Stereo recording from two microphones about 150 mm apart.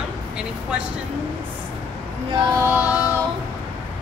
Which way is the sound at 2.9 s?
20° left (ahead or behind).